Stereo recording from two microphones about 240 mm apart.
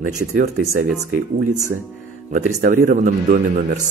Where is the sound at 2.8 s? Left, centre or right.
Right.